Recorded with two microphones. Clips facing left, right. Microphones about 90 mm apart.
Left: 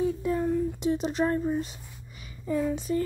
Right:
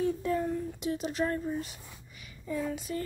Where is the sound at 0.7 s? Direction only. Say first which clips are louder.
Left 5 dB; 25° left (ahead or behind).